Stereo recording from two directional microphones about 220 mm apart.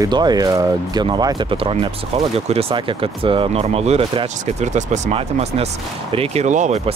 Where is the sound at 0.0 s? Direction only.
20° right (ahead or behind).